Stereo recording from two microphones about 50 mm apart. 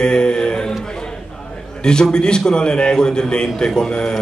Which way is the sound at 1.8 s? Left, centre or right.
Centre.